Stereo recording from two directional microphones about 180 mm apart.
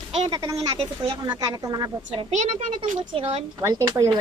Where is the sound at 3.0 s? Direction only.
30° right (ahead or behind).